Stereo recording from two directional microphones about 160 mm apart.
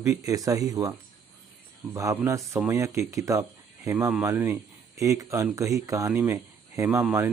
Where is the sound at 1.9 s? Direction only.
20° right (ahead or behind).